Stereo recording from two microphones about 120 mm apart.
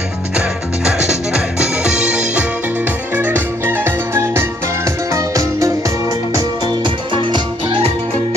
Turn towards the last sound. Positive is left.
turn(degrees=-25)  # may be behind; listen again after turning